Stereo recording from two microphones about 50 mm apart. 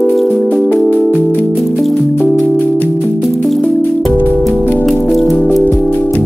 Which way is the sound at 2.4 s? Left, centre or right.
Left.